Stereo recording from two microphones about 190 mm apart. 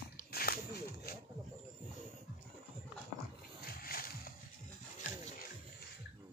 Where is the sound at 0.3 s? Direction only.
55° left (ahead or behind).